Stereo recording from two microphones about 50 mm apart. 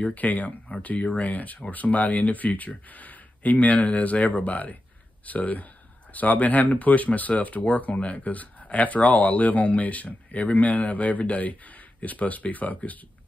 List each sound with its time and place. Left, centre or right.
0.0 s speech: left